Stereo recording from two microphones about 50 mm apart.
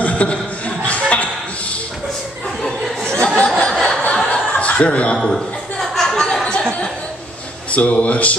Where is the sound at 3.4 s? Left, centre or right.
Centre.